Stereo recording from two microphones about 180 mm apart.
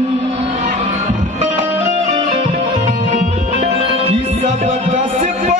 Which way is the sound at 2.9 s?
40° right (ahead or behind).